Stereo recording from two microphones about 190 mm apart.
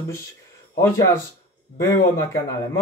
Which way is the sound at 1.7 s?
15° left (ahead or behind).